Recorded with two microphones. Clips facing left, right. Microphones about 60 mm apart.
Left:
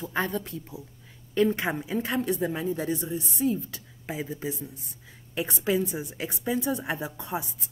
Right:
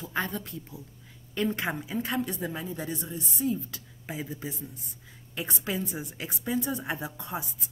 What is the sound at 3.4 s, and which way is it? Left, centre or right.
Speech, left.